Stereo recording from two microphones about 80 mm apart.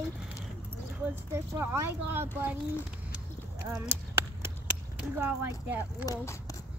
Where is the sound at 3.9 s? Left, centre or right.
Right.